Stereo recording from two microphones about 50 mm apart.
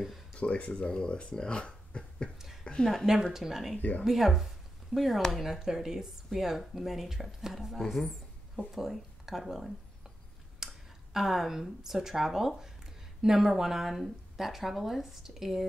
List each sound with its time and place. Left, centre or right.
0.3 s speech: left
2.3 s speech: centre
2.6 s a woman's voice: left
3.3 s speech: centre
10.6 s a sound: centre
11.1 s speech: centre